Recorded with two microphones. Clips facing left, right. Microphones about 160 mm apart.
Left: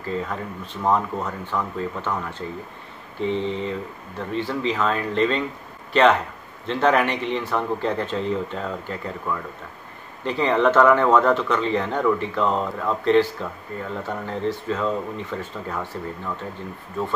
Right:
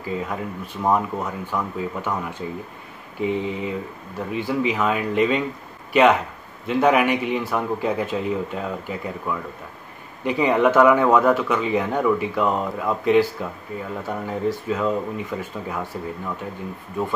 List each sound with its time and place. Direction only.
0.0 s speech: 10° right (ahead or behind)